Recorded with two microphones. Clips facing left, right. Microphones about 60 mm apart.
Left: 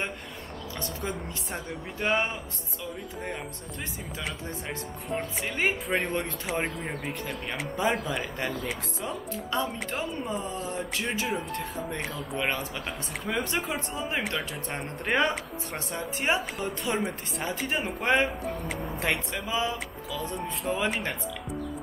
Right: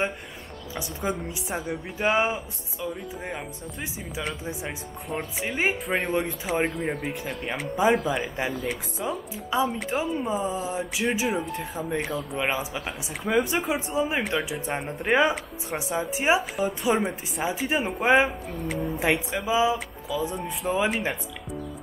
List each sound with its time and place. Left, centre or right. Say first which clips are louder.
0.7 s speech: right 5 dB; centre